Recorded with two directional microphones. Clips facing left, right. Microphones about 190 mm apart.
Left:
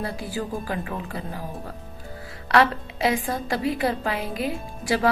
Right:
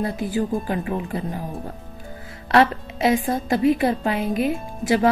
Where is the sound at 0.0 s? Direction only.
20° right (ahead or behind).